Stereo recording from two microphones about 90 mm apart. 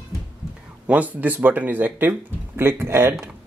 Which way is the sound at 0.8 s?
15° right (ahead or behind).